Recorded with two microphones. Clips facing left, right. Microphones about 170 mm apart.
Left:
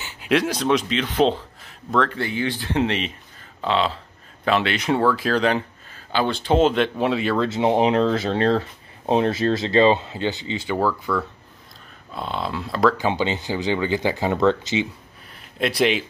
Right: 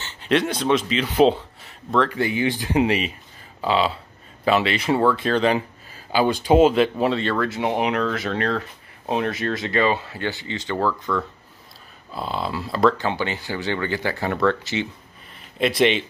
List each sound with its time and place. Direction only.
0.0 s speech: 10° left (ahead or behind)
2.0 s speech: 15° right (ahead or behind); by 7.3 s 5° left (ahead or behind)
7.3 s speech: 25° left (ahead or behind); by 12.9 s centre (ahead or behind)
12.9 s speech: 15° left (ahead or behind)
15.3 s speech: centre (ahead or behind)